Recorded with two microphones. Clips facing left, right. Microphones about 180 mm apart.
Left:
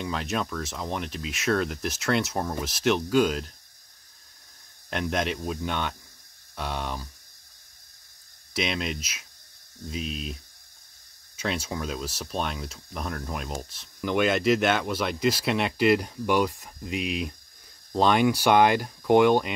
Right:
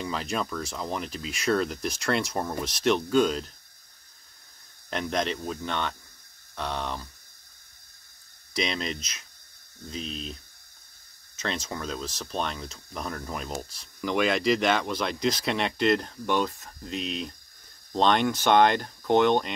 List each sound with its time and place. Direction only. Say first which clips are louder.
0.0 s speech: left 1 dB; centre (ahead or behind)
4.8 s speech: left 1 dB; 5° left (ahead or behind)
8.5 s speech: left 1 dB; 5° left (ahead or behind)